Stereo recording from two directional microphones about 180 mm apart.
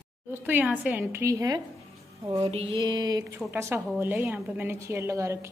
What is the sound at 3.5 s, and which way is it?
A woman's voice, 10° right (ahead or behind).